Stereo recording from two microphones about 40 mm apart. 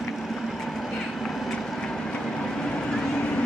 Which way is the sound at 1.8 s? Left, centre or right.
Left.